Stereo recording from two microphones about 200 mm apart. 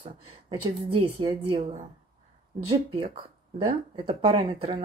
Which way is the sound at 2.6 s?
25° right (ahead or behind).